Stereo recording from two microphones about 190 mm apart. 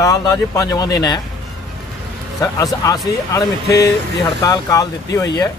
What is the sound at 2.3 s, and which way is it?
A man's voice, 15° left (ahead or behind).